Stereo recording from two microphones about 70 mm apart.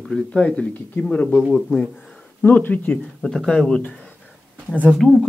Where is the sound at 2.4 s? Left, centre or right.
Left.